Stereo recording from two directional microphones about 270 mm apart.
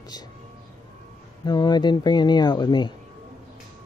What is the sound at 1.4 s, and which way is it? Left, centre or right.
Speech, centre.